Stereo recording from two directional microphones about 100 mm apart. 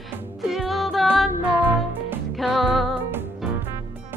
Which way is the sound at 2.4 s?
Centre (ahead or behind).